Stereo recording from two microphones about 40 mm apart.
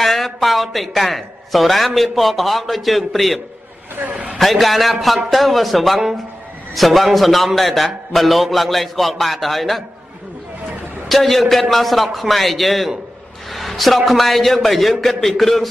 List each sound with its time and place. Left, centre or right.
0.0 s a man's voice: centre
4.1 s a man's voice: right
4.4 s a man's voice: centre
11.1 s a man's voice: centre